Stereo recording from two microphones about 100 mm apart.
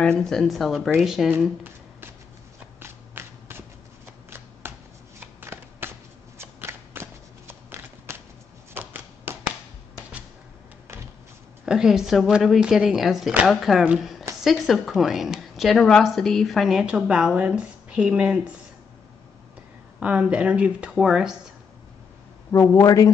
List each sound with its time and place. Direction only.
0.0 s a woman's voice: 5° left (ahead or behind)
1.6 s shuffling cards: 25° right (ahead or behind)
8.7 s typewriter: 20° right (ahead or behind)
11.6 s a woman's voice: 5° right (ahead or behind)
20.0 s speech: 10° right (ahead or behind)
22.5 s a man's voice: 30° left (ahead or behind)